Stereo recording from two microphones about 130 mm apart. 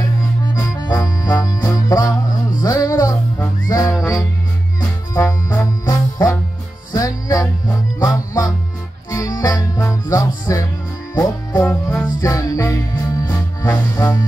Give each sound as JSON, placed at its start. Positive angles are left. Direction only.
{"t": 0.6, "sound": "music", "side_deg": 30}